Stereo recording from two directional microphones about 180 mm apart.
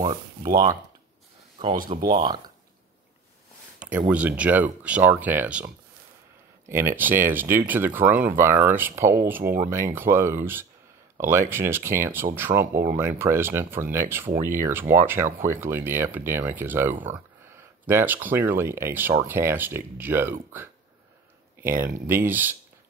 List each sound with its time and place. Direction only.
0.0 s speech: 25° right (ahead or behind)
2.1 s speech: 25° right (ahead or behind)
4.1 s speech: 10° right (ahead or behind)
6.7 s speech: 15° right (ahead or behind)